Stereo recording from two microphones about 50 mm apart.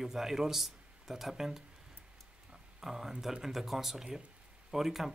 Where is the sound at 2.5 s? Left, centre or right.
Centre.